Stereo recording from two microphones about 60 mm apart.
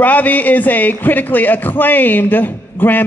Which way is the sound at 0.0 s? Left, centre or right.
Left.